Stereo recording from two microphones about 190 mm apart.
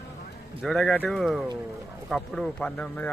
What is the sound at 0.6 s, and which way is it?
A man's voice, centre (ahead or behind).